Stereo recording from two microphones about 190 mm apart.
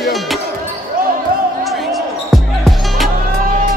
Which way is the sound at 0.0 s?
Centre (ahead or behind).